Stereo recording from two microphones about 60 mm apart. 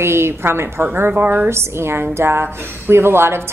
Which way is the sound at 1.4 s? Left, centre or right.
Right.